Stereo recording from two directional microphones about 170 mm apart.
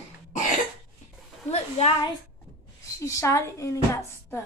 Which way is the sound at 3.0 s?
15° left (ahead or behind).